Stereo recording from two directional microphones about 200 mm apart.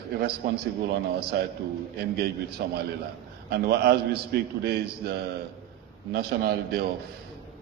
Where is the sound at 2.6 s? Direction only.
50° right (ahead or behind).